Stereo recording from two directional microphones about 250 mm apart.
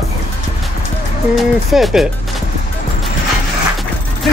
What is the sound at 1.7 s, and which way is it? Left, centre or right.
Speech, centre.